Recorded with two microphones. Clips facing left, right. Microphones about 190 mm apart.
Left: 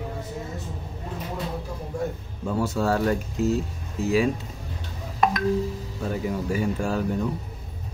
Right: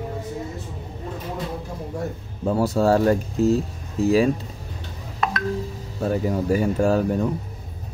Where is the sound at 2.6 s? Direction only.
35° right (ahead or behind).